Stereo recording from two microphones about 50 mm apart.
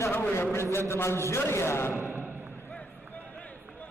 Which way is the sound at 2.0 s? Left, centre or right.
Right.